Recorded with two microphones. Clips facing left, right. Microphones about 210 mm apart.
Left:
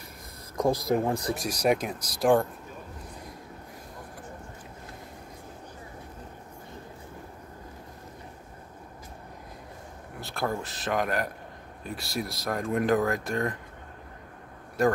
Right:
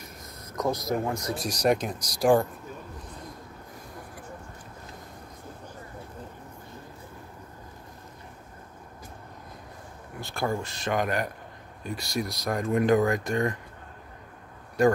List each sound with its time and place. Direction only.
0.6 s speech: 30° left (ahead or behind)
1.3 s speech: 10° left (ahead or behind)
10.2 s speech: centre (ahead or behind)
14.8 s speech: centre (ahead or behind)